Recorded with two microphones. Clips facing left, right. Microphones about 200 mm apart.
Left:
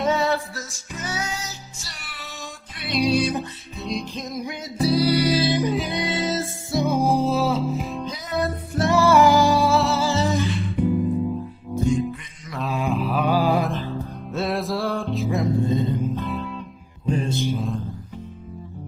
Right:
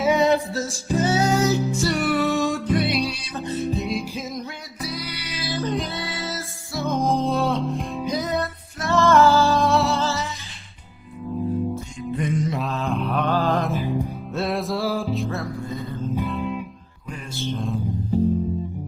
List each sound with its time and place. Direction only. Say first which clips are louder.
0.0 s music: right 3 dB; 15° right (ahead or behind)
0.9 s music: right 10 dB; 30° right (ahead or behind)
1.3 s music: right 15 dB; 55° right (ahead or behind)
4.7 s music: left 14 dB; 30° left (ahead or behind)
5.4 s music: left 4 dB; 20° left (ahead or behind); by 7.8 s 5° left (ahead or behind)
8.8 s music: even; 15° left (ahead or behind)
9.7 s music: even; centre (ahead or behind)
10.3 s music: left 19 dB; 65° left (ahead or behind)
12.7 s mantra: left 6 dB; 5° left (ahead or behind)
13.7 s music: right 3 dB; 10° right (ahead or behind)
14.3 s music: left 1 dB; centre (ahead or behind)
15.2 s music: left 6 dB; 20° left (ahead or behind)